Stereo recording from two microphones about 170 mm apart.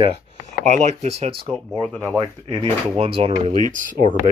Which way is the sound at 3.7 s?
50° right (ahead or behind).